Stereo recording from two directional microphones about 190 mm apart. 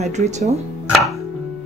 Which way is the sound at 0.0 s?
35° right (ahead or behind).